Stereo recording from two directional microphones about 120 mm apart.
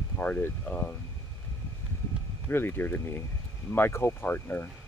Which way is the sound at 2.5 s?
20° left (ahead or behind).